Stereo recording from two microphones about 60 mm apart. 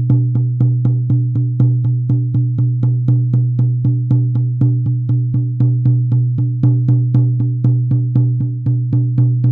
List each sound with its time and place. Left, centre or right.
0.1 s music: centre
6.6 s music: centre